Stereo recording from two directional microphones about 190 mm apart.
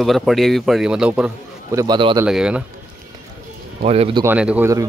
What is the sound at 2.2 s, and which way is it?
Speech, 5° right (ahead or behind).